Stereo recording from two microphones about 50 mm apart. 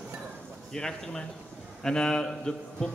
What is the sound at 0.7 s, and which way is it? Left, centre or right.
A man's voice, centre.